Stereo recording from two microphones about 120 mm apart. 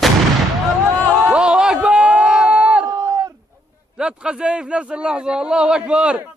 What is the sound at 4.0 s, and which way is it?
A man's voice, 5° right (ahead or behind).